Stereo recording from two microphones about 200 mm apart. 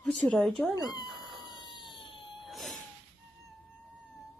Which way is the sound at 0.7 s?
20° left (ahead or behind).